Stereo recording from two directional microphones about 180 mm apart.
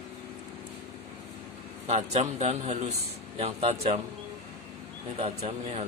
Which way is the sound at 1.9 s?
35° right (ahead or behind).